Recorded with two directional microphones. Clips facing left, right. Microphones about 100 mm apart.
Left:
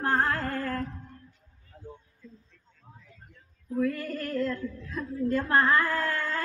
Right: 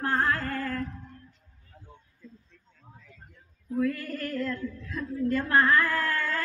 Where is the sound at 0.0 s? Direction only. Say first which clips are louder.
Left 1 dB; 25° left (ahead or behind).